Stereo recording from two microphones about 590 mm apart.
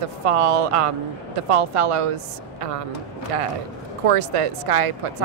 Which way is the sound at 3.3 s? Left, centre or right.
Right.